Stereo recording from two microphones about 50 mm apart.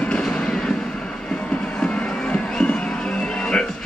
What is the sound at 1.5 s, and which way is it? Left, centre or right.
Music, left.